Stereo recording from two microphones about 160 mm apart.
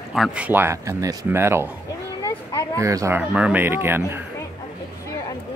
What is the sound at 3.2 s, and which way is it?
Speech, 10° right (ahead or behind).